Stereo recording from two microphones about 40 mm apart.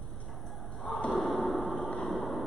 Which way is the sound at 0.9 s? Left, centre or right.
Left.